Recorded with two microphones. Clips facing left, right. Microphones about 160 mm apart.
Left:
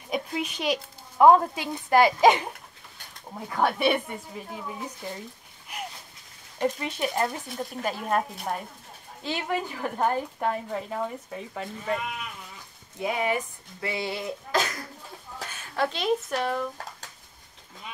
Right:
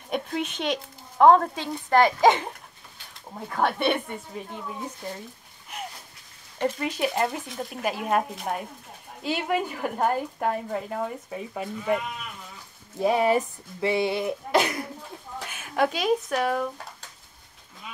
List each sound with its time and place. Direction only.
0.1 s speech: centre (ahead or behind)
3.3 s speech: centre (ahead or behind)
6.8 s a woman's voice: 5° right (ahead or behind)
13.0 s speech: 35° right (ahead or behind)
13.7 s speech: 25° right (ahead or behind)
15.5 s a woman's voice: 10° right (ahead or behind)